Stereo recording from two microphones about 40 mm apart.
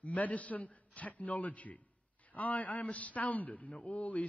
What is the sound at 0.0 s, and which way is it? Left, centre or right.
A man's voice, left.